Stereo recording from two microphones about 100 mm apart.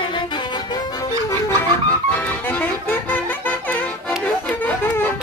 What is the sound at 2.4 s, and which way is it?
Music, 20° left (ahead or behind).